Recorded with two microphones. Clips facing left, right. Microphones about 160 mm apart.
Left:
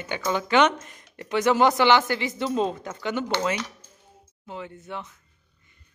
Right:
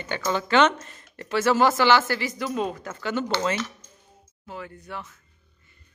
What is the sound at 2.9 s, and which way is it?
Speech, 15° left (ahead or behind).